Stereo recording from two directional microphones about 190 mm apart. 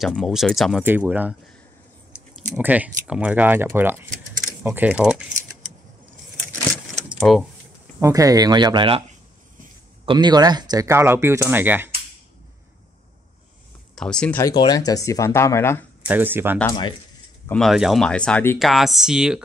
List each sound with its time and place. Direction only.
0.0 s speech: centre (ahead or behind)
2.5 s speech: 10° right (ahead or behind)
6.4 s vehicle: centre (ahead or behind)
7.1 s a sound: centre (ahead or behind)
8.0 s speech: 20° right (ahead or behind)
10.0 s speech: 20° right (ahead or behind)
13.9 s speech: 5° left (ahead or behind)
14.4 s speech: 20° left (ahead or behind)
16.1 s speech: 10° right (ahead or behind)
17.5 s speech: centre (ahead or behind)